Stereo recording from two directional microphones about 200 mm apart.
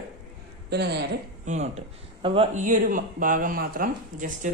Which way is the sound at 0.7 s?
55° right (ahead or behind).